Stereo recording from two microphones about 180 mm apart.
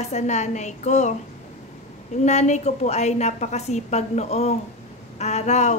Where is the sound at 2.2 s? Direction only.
40° left (ahead or behind).